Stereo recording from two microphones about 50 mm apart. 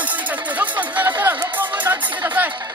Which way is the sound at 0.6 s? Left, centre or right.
Right.